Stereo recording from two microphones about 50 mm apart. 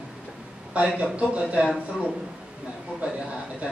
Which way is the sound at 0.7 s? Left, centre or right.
Right.